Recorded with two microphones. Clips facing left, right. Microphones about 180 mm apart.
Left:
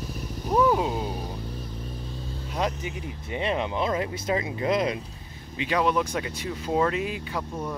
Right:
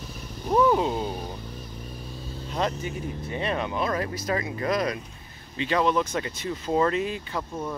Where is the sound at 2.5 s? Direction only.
10° left (ahead or behind).